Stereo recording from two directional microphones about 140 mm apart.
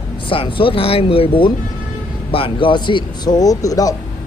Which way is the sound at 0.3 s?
40° left (ahead or behind).